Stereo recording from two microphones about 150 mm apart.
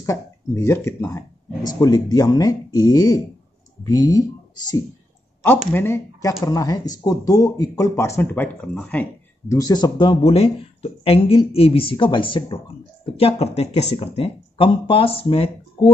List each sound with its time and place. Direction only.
0.0 s speech: 20° left (ahead or behind)
5.7 s speech: 15° left (ahead or behind)
9.5 s speech: 25° left (ahead or behind)
13.2 s speech: 45° left (ahead or behind)